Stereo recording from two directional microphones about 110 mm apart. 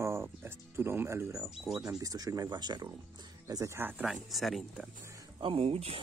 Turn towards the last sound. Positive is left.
turn(degrees=-60)  # may be behind; listen again after turning